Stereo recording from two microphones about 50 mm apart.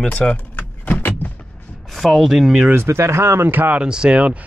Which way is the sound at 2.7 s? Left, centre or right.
Right.